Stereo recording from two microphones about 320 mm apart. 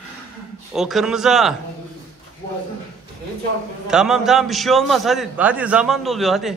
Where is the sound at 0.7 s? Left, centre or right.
Centre.